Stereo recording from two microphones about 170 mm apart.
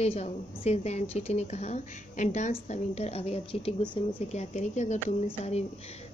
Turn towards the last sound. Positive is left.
turn(degrees=40)  # may be behind; listen again after turning